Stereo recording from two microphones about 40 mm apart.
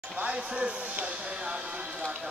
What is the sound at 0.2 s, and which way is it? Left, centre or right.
Speech, right.